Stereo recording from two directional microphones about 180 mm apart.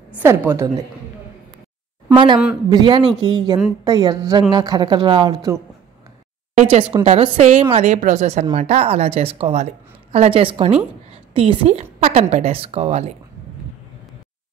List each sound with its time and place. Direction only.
0.2 s a woman's voice: 15° right (ahead or behind)
2.1 s a woman's voice: 25° right (ahead or behind)
6.5 s speech: 35° right (ahead or behind)